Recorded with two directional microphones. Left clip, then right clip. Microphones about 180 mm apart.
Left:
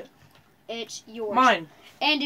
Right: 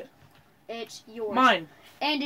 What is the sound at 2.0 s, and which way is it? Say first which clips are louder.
Speech: left 4 dB; 15° left (ahead or behind).